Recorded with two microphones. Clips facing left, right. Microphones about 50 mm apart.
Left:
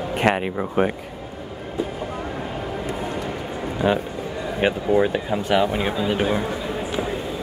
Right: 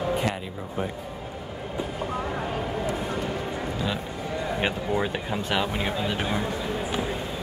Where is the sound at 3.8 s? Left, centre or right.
Left.